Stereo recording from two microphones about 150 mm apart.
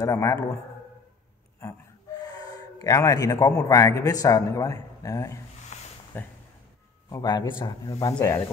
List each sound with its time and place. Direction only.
0.0 s a man's voice: 20° left (ahead or behind)
2.3 s a man's voice: 25° left (ahead or behind)
5.7 s a sound: 50° left (ahead or behind)
6.1 s speech: 10° left (ahead or behind)
7.1 s a man's voice: 25° left (ahead or behind)